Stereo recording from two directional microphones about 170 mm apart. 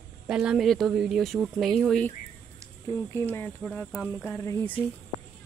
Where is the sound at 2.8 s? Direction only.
15° left (ahead or behind).